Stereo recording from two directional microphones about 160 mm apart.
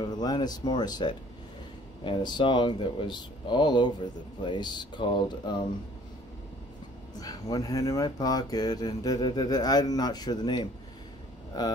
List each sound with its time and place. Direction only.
0.0 s speech: 25° left (ahead or behind)
7.2 s speech: 20° left (ahead or behind)